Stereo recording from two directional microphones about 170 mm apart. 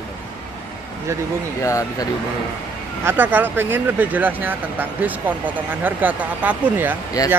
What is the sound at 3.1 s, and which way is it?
Speech, 10° right (ahead or behind).